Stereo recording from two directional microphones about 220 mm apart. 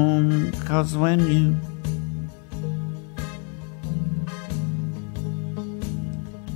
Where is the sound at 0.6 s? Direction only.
20° right (ahead or behind).